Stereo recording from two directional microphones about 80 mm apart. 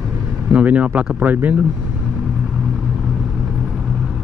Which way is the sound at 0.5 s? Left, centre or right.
Centre.